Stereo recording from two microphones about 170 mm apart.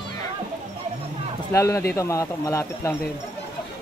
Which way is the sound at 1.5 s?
15° left (ahead or behind).